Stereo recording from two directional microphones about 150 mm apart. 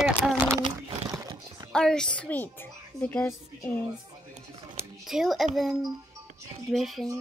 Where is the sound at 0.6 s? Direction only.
25° right (ahead or behind).